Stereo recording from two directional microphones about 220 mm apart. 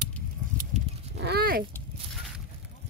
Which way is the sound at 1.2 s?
45° right (ahead or behind).